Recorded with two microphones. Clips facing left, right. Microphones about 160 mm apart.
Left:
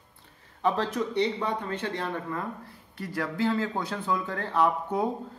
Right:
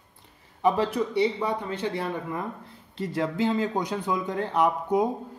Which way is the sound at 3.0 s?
25° right (ahead or behind).